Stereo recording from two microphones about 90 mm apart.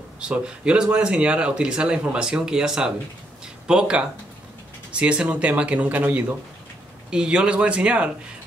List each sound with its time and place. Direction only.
0.2 s speech: 10° right (ahead or behind)